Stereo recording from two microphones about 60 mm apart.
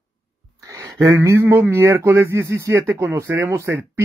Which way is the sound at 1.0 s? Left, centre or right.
Right.